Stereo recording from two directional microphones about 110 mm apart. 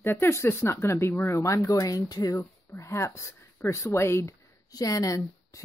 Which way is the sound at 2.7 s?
25° left (ahead or behind).